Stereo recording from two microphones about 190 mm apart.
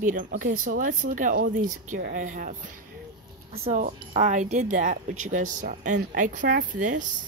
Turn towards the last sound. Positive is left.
turn(degrees=-40)  # may be behind; listen again after turning